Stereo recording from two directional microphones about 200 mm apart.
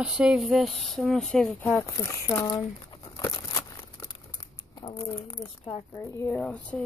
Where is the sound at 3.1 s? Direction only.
20° left (ahead or behind).